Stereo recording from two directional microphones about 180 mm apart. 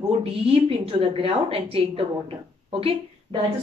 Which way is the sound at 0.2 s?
30° right (ahead or behind).